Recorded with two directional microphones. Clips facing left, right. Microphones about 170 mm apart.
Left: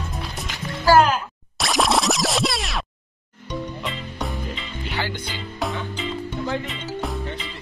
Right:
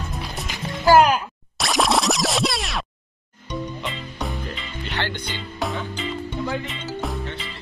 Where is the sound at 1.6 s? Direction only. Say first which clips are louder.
Even; centre (ahead or behind).